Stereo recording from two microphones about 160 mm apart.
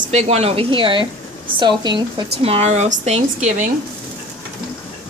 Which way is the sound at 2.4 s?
40° right (ahead or behind).